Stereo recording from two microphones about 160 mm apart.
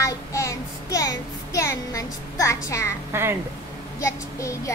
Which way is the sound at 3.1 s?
15° right (ahead or behind).